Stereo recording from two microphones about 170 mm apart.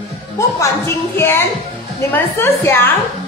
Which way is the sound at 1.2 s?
15° left (ahead or behind).